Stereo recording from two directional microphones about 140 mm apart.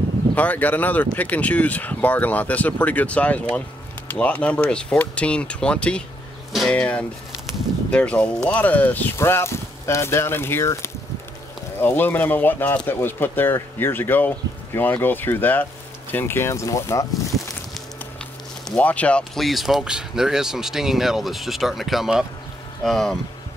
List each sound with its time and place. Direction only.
0.4 s speech: 10° left (ahead or behind)
18.8 s speech: 10° left (ahead or behind)